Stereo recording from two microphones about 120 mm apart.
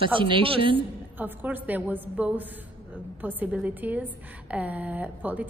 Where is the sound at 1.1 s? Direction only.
15° right (ahead or behind).